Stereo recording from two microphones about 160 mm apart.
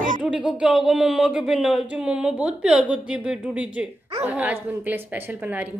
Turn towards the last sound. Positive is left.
turn(degrees=-10)  # may be behind; listen again after turning